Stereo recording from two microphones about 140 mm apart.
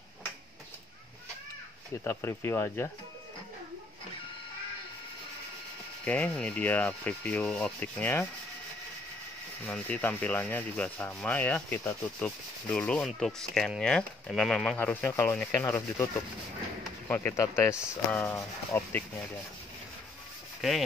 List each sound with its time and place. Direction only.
2.0 s rub: 15° left (ahead or behind)
6.0 s rub: 10° left (ahead or behind)
9.7 s rub: 10° left (ahead or behind)
17.1 s rub: 15° left (ahead or behind)